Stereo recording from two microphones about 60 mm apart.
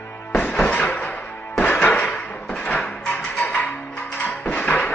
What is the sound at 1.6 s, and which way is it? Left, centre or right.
Music, left.